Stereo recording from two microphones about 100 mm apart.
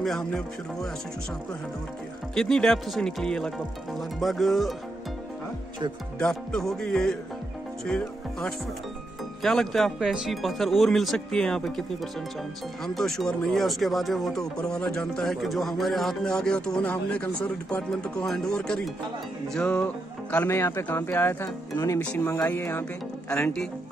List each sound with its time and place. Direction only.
0.0 s speech: 5° left (ahead or behind)
2.3 s speech: 5° left (ahead or behind)
6.1 s speech: 5° left (ahead or behind)
12.8 s speech: 5° left (ahead or behind)
19.5 s music: 10° left (ahead or behind)
20.4 s speech: 25° left (ahead or behind)